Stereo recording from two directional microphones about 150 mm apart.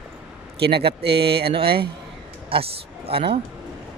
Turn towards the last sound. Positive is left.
turn(degrees=-40)  # may be behind; listen again after turning